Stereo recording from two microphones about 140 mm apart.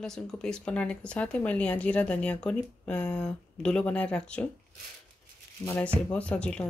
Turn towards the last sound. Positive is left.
turn(degrees=10)  # may be behind; listen again after turning